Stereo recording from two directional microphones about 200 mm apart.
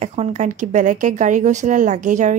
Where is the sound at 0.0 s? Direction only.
35° right (ahead or behind).